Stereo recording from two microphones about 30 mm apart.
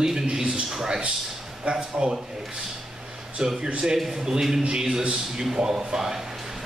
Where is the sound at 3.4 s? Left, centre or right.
Right.